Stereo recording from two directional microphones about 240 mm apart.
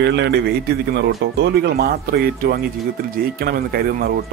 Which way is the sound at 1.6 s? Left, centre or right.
Right.